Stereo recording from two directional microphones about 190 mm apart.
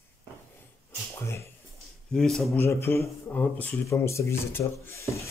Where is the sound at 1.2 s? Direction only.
15° left (ahead or behind).